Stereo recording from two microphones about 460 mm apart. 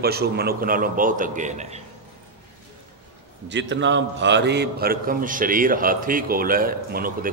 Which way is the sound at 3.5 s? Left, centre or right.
Right.